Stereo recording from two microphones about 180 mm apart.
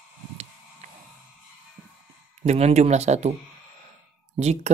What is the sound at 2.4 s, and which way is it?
Speech, 35° right (ahead or behind).